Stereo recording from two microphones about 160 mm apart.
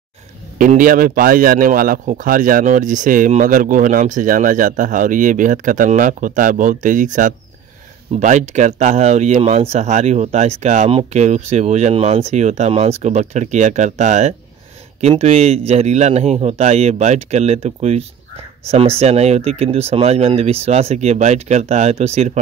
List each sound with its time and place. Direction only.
0.6 s a man's voice: 55° right (ahead or behind)